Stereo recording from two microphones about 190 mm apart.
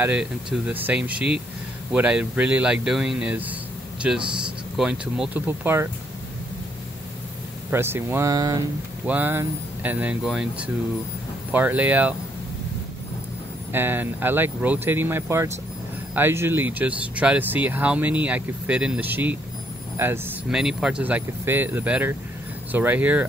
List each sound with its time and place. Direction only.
0.0 s speech: 5° right (ahead or behind)
7.7 s speech: 10° right (ahead or behind)
13.7 s speech: 10° right (ahead or behind)